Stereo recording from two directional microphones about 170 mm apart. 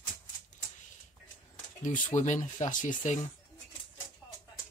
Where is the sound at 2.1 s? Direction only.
45° left (ahead or behind).